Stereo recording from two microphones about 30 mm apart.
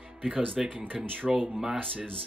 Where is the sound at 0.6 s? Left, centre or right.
Right.